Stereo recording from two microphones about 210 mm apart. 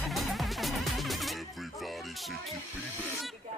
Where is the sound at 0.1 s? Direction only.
Centre (ahead or behind).